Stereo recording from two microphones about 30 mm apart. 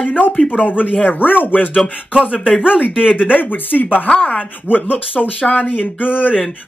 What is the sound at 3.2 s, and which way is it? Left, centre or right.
Speech, left.